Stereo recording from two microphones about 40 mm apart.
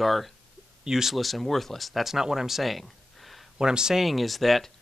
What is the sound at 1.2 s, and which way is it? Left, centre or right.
Speech, centre.